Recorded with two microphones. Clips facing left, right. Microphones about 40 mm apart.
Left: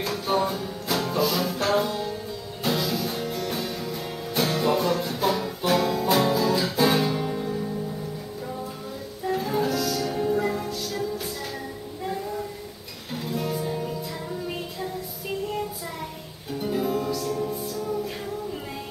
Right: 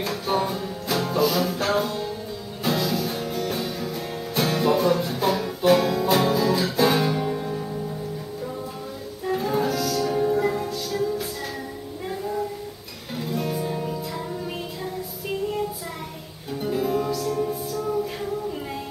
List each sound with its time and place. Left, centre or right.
0.0 s music: centre
9.3 s music: centre
13.1 s music: centre
16.6 s music: centre